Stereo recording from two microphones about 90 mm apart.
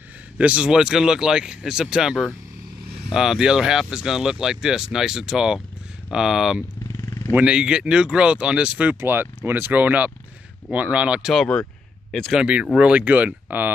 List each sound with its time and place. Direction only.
0.4 s speech: 10° right (ahead or behind)
9.0 s speech: 25° right (ahead or behind); by 12.4 s 5° left (ahead or behind)
12.4 s speech: 15° right (ahead or behind)